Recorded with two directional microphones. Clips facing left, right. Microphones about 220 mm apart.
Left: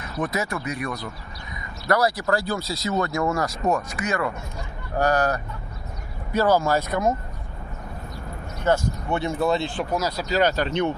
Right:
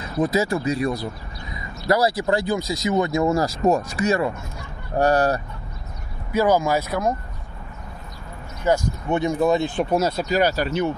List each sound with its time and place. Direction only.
0.0 s speech: 25° right (ahead or behind)
6.3 s speech: 15° right (ahead or behind)
8.6 s speech: 15° right (ahead or behind)
10.2 s speech: 10° right (ahead or behind)